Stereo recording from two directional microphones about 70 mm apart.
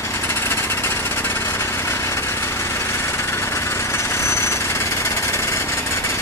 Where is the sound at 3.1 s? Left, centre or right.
Left.